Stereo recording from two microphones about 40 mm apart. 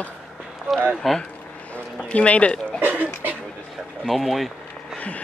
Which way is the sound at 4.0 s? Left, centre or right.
Centre.